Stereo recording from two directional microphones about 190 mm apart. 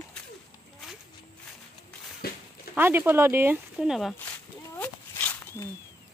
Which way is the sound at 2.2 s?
55° left (ahead or behind).